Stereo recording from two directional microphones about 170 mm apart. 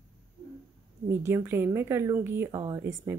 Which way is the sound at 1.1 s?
15° right (ahead or behind).